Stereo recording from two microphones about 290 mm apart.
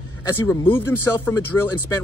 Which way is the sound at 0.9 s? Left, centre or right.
Centre.